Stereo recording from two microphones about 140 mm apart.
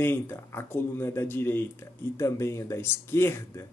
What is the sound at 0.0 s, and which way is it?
Speech, 15° left (ahead or behind).